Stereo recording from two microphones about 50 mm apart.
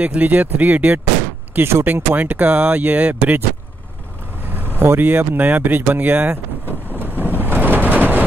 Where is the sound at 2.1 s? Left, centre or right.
Right.